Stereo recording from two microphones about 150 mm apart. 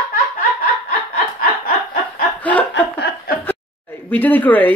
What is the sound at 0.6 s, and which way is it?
Snicker, 70° left (ahead or behind).